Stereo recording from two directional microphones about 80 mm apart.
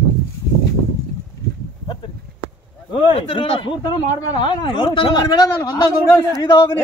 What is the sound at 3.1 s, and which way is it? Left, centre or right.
Speech, left.